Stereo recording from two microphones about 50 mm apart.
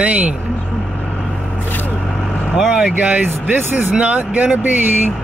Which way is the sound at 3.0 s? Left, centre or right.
Right.